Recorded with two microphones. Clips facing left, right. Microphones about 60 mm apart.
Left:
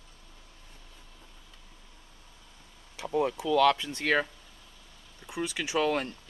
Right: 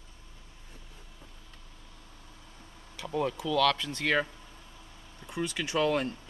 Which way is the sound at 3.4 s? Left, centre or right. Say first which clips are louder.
Left 3 dB; centre.